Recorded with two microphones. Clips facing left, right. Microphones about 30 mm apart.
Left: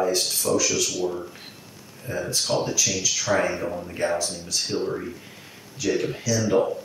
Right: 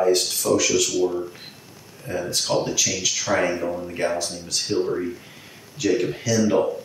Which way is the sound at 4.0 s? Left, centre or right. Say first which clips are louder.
Left 1 dB; right.